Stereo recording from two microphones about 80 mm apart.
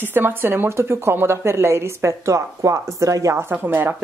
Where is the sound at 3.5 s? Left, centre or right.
Right.